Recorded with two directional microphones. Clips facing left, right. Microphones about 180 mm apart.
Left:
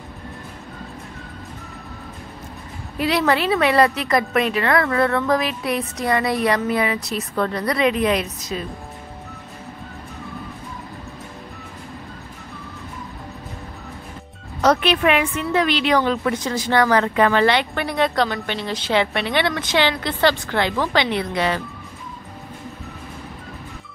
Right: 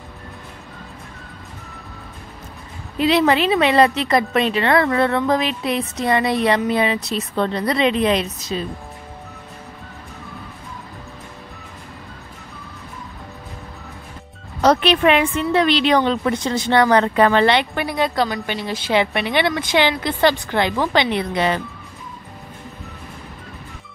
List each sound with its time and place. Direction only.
3.0 s a woman's voice: 25° right (ahead or behind)
14.6 s a woman's voice: 30° right (ahead or behind)
17.8 s a woman's voice: 5° right (ahead or behind); by 21.5 s 20° right (ahead or behind)